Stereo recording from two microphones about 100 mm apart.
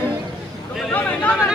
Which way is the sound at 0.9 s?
15° left (ahead or behind).